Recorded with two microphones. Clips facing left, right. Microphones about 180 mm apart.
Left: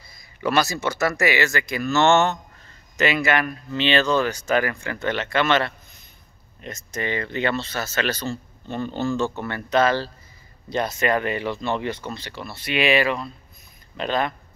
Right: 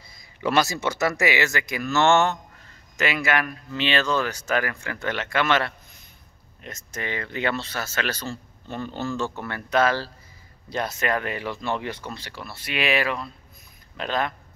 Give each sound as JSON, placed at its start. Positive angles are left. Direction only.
{"t": 0.4, "sound": "speech", "side_deg": -20}